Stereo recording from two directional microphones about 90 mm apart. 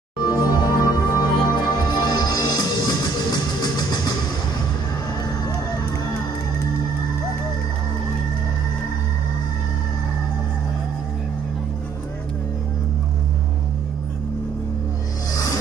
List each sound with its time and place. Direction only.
0.2 s music: 45° left (ahead or behind)